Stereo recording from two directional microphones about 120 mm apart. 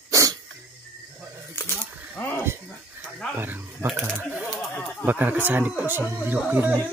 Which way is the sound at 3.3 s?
15° right (ahead or behind).